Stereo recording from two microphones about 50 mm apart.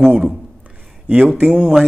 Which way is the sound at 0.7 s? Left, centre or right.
Right.